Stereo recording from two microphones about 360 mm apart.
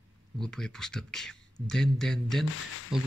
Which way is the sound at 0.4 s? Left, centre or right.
Centre.